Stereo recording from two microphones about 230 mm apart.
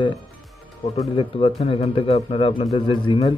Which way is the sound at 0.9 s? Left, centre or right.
Left.